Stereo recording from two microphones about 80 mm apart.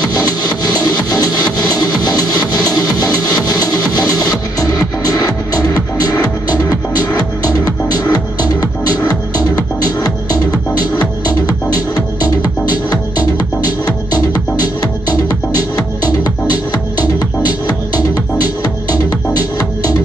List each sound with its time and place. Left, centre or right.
0.7 s music: left